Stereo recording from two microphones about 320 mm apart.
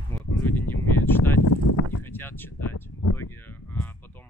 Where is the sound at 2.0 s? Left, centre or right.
Centre.